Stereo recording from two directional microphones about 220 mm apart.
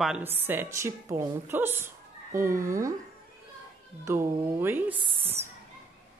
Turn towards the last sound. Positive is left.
turn(degrees=-25)  # may be behind; listen again after turning